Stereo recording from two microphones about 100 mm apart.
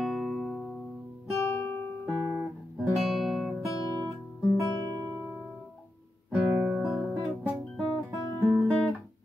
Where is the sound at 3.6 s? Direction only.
40° left (ahead or behind).